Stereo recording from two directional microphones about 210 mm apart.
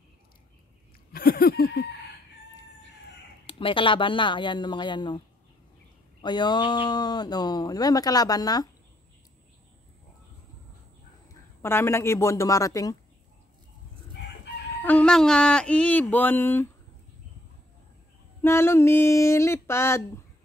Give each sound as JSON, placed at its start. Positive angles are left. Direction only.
{"t": 1.1, "sound": "a sound", "side_deg": 45}
{"t": 3.4, "sound": "speech", "side_deg": 25}
{"t": 6.2, "sound": "speech", "side_deg": 20}
{"t": 11.6, "sound": "speech", "side_deg": 10}
{"t": 14.8, "sound": "speech", "side_deg": 5}
{"t": 18.4, "sound": "speech", "side_deg": 10}